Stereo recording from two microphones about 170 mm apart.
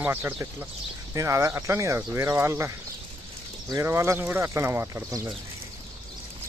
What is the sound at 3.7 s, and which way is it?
Speech, 15° right (ahead or behind).